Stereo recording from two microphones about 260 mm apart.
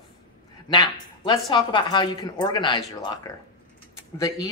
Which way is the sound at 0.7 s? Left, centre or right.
Centre.